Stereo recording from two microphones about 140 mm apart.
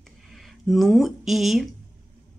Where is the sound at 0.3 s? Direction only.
Centre (ahead or behind).